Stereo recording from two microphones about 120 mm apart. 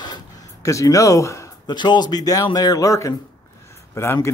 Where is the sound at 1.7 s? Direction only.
40° left (ahead or behind).